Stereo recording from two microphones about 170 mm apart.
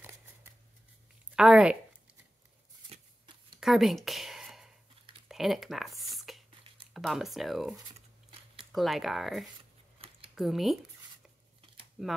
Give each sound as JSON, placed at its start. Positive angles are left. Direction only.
{"t": 1.3, "sound": "speech", "side_deg": -5}
{"t": 3.5, "sound": "a sound", "side_deg": 0}
{"t": 5.3, "sound": "speech", "side_deg": 0}
{"t": 8.7, "sound": "speech", "side_deg": 0}
{"t": 9.9, "sound": "a sound", "side_deg": -35}
{"t": 10.3, "sound": "speech", "side_deg": 0}
{"t": 12.0, "sound": "speech", "side_deg": 0}